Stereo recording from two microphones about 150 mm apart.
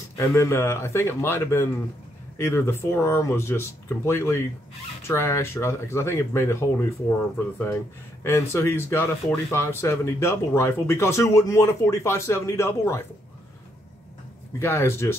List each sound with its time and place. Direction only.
0.1 s speech: 20° left (ahead or behind)
14.6 s speech: 15° left (ahead or behind)